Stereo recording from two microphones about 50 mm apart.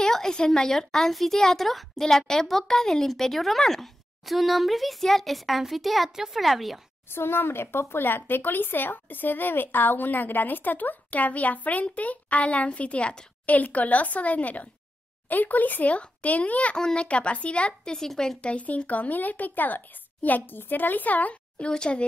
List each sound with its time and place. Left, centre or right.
0.0 s a sound: centre
0.5 s a woman's voice: centre
7.1 s speech: left
16.7 s speech: centre
17.9 s a woman's voice: centre
18.4 s speech: left